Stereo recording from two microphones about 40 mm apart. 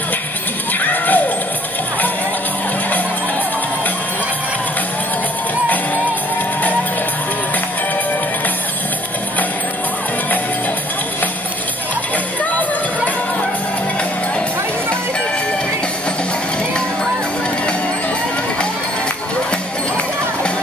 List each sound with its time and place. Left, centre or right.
0.8 s music: left